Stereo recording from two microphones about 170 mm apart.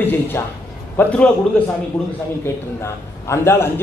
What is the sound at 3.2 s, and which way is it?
Speech, 15° left (ahead or behind).